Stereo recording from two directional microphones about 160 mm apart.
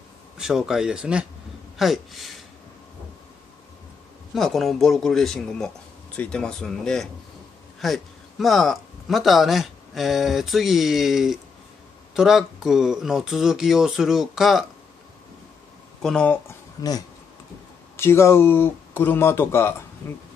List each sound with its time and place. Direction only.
0.4 s speech: 5° right (ahead or behind)
4.3 s speech: centre (ahead or behind)
16.0 s speech: 5° left (ahead or behind)
16.8 s speech: 25° left (ahead or behind)